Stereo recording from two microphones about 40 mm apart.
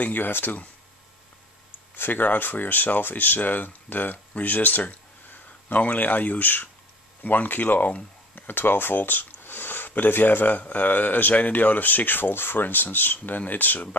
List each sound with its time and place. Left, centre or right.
0.0 s speech: left
2.0 s speech: left